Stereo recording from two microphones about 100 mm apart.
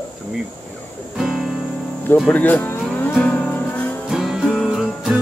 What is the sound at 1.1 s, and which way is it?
Music, 5° right (ahead or behind).